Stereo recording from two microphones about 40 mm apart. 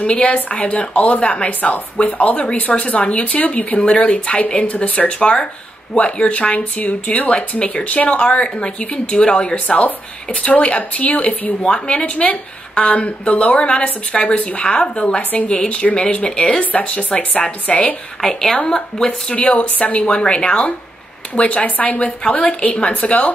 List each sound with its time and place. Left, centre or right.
0.0 s speech: left
1.6 s speech: left
10.5 s speech: left
14.8 s speech: left
18.2 s a woman's voice: centre
19.3 s speech: left
20.1 s speech: left